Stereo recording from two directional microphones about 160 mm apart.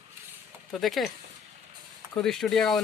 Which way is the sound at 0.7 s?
Centre (ahead or behind).